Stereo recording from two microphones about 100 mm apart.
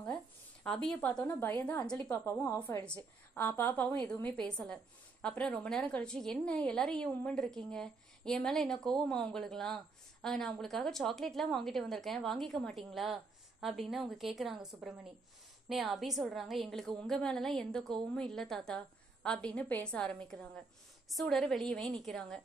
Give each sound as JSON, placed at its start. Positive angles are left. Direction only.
{"t": 0.8, "sound": "a woman's voice", "side_deg": 10}
{"t": 2.0, "sound": "a woman's voice", "side_deg": 30}
{"t": 3.3, "sound": "a woman's voice", "side_deg": 20}